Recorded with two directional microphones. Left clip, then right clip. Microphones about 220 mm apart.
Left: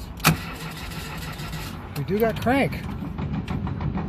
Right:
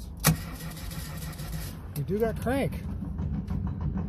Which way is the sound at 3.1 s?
35° left (ahead or behind).